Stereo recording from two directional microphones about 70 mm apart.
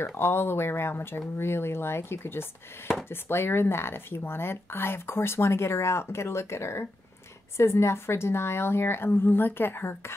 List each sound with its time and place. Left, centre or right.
0.0 s speech: left